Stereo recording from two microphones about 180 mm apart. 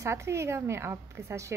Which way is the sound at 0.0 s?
15° right (ahead or behind).